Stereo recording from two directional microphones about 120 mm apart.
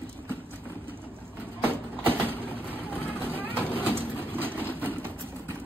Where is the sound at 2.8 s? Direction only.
15° left (ahead or behind).